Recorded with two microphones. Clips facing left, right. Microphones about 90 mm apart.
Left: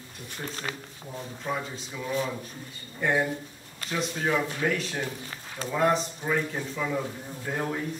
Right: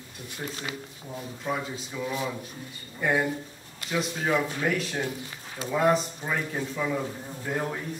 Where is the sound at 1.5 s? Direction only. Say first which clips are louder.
Right 1 dB; centre (ahead or behind).